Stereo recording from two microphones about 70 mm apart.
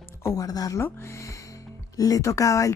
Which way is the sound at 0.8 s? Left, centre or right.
Left.